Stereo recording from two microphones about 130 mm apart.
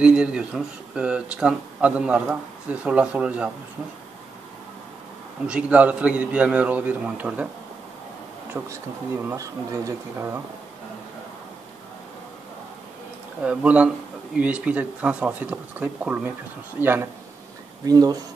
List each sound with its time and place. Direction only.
0.0 s speech: 5° right (ahead or behind)
5.5 s speech: 10° right (ahead or behind)
8.5 s speech: 15° right (ahead or behind)
13.4 s speech: 10° right (ahead or behind)
17.8 s speech: 30° right (ahead or behind)